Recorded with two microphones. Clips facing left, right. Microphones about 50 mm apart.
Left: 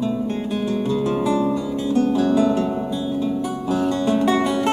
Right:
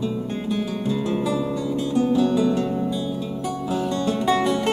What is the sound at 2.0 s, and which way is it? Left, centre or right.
Music, left.